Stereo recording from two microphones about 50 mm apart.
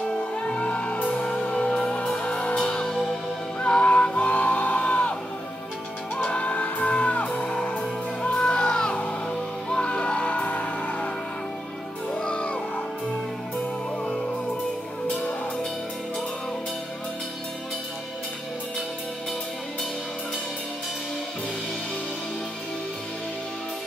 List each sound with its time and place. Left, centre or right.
0.5 s music: left
3.6 s music: left
6.1 s music: left
7.3 s music: centre
12.1 s music: centre